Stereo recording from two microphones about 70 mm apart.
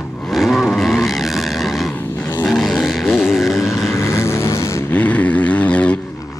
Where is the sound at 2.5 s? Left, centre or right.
Centre.